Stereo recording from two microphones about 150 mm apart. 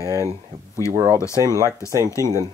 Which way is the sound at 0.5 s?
25° right (ahead or behind).